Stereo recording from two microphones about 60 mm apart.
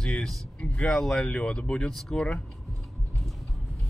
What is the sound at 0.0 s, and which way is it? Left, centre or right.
Speech, centre.